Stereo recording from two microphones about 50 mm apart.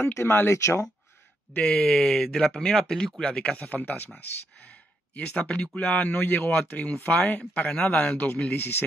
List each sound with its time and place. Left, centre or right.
0.0 s speech: left
0.6 s speech: left
1.6 s speech: left
1.9 s speech: centre
3.3 s speech: left
6.3 s speech: left
8.5 s speech: left